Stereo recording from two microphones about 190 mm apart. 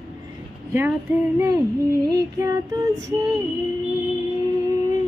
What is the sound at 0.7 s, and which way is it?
Female singing, 10° right (ahead or behind).